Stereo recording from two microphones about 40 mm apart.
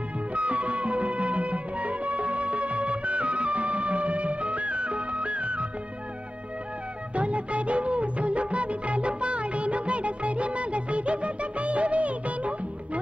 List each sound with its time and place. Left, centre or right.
0.3 s music: right
7.2 s music of bollywood: right